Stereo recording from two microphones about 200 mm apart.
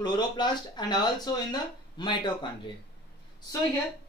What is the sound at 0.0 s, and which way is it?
Speech, 20° left (ahead or behind).